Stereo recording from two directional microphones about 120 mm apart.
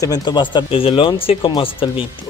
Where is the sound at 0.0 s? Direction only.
35° left (ahead or behind).